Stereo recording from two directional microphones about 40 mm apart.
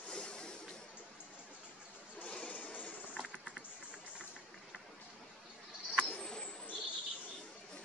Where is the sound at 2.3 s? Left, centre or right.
Left.